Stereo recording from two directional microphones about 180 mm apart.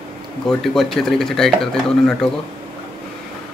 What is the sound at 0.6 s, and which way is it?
Speech, centre (ahead or behind).